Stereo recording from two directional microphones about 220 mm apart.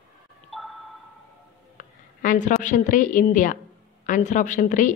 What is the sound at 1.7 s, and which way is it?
A woman's voice, 35° left (ahead or behind).